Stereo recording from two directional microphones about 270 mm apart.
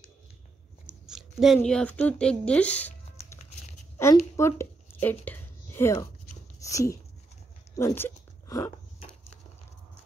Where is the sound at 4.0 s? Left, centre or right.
Centre.